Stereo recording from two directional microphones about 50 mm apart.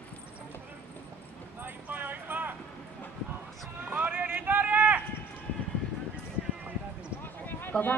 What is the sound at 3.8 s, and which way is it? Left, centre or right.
Clip-clop, right.